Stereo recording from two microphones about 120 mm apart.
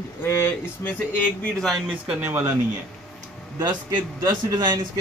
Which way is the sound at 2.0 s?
15° right (ahead or behind).